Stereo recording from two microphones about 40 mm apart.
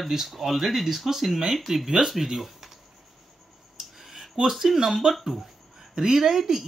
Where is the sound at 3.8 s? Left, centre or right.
Centre.